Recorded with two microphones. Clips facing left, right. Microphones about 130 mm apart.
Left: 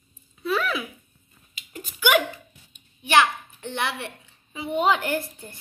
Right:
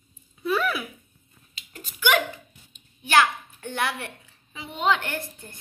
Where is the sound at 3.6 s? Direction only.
25° left (ahead or behind).